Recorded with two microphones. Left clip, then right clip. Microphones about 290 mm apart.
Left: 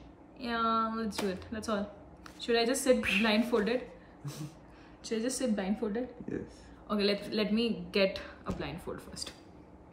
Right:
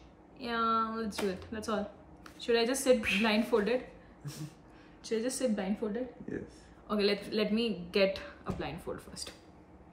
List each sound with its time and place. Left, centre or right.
0.4 s a woman's voice: centre
5.0 s a woman's voice: centre